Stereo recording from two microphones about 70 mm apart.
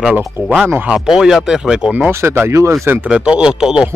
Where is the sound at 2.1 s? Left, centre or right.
Right.